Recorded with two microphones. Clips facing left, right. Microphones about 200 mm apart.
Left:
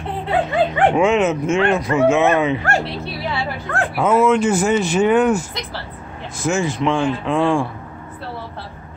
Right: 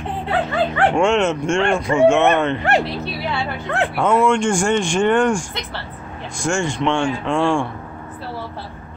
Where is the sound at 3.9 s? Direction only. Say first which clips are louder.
Left 2 dB; 5° left (ahead or behind).